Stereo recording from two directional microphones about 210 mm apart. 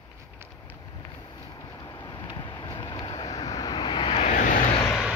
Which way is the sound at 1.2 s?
20° left (ahead or behind).